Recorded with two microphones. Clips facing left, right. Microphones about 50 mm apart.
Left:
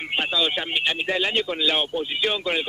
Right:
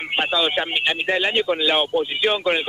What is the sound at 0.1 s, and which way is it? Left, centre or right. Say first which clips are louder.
Speech: right 3 dB; centre.